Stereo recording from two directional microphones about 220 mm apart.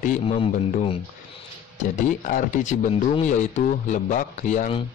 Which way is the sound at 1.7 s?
35° left (ahead or behind).